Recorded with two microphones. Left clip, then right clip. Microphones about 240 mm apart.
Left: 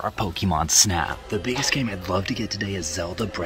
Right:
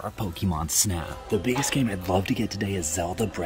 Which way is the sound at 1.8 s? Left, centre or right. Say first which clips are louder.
Even; centre.